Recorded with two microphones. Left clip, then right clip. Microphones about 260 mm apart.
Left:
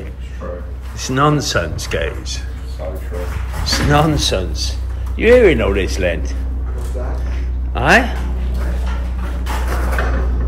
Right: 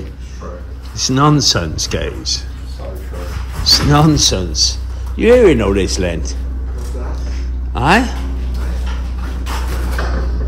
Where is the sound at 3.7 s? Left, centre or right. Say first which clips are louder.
Right 2 dB; centre.